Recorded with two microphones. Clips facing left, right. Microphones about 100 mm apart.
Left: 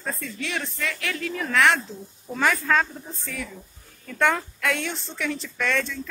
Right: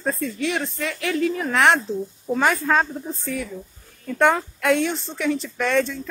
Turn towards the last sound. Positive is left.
turn(degrees=-20)  # may be behind; listen again after turning